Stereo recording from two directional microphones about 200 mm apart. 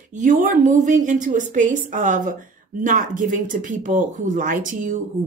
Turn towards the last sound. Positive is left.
turn(degrees=-40)  # may be behind; listen again after turning